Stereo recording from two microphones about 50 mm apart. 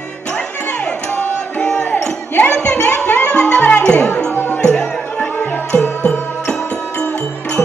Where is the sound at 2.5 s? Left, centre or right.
Left.